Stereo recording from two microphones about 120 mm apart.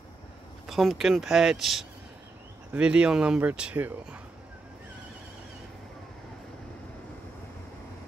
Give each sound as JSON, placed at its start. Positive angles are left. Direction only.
{"t": 0.7, "sound": "speech", "side_deg": 0}